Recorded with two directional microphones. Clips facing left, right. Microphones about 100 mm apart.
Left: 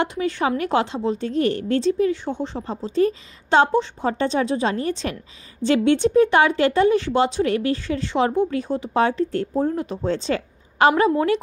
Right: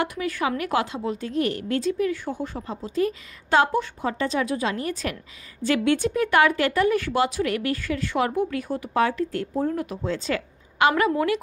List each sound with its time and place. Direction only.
0.0 s speech: 25° left (ahead or behind)